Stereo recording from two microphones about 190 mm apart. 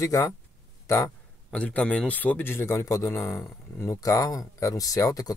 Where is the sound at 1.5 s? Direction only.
5° left (ahead or behind).